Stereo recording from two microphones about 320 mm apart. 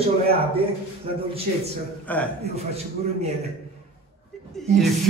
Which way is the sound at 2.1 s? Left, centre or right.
Centre.